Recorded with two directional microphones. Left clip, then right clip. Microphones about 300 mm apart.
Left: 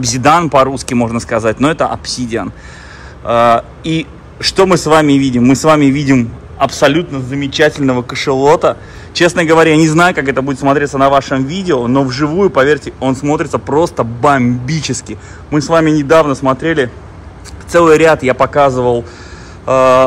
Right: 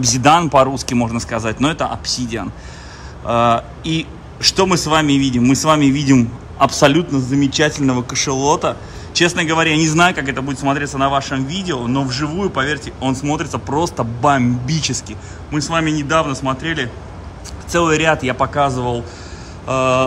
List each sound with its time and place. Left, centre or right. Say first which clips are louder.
0.0 s speech: left 3 dB; centre